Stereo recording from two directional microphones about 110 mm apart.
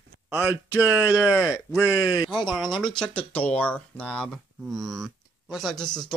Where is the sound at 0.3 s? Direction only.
15° right (ahead or behind).